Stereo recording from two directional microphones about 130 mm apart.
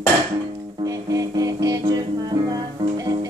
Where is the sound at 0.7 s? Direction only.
25° right (ahead or behind).